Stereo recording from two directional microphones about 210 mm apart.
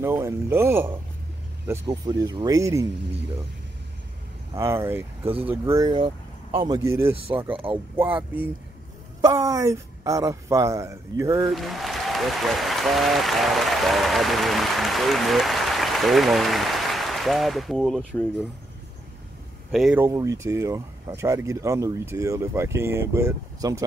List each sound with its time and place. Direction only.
0.0 s speech: 10° right (ahead or behind)
4.6 s speech: 10° right (ahead or behind)
6.8 s speech: 15° right (ahead or behind)
7.5 s speech: 25° right (ahead or behind)
9.2 s speech: 15° right (ahead or behind)
11.4 s speech: centre (ahead or behind)
19.7 s speech: 5° right (ahead or behind)
20.1 s speech: 15° right (ahead or behind)